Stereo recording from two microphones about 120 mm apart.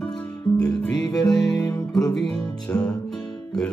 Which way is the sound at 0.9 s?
30° left (ahead or behind).